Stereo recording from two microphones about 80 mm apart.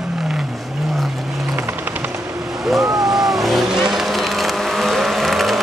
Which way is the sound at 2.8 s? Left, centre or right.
Right.